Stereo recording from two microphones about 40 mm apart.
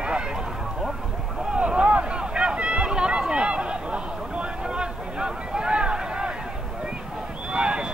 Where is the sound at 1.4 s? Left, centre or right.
Centre.